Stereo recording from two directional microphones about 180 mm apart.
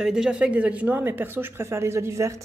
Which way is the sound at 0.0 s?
5° right (ahead or behind).